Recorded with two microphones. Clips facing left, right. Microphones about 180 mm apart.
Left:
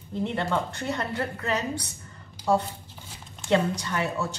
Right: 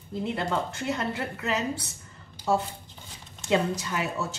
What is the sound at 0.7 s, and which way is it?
Speech, 5° right (ahead or behind).